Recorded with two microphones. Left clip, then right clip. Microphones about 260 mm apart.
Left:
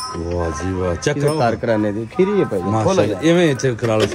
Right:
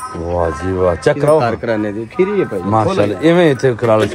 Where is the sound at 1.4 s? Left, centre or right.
Left.